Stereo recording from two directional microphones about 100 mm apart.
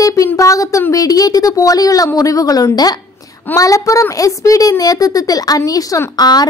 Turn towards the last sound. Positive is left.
turn(degrees=45)  # may be behind; listen again after turning